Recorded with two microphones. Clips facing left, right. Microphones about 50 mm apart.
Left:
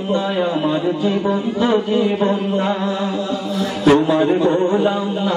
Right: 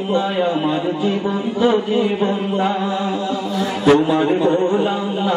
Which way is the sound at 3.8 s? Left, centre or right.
Centre.